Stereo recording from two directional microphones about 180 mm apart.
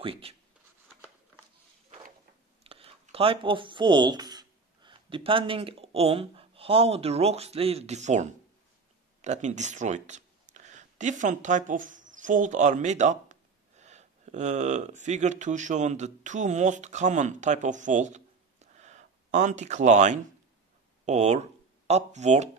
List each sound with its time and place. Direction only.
0.0 s speech: 30° right (ahead or behind)
2.6 s speech: 30° right (ahead or behind)